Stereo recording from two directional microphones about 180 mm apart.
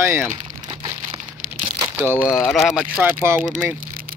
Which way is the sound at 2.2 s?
15° left (ahead or behind).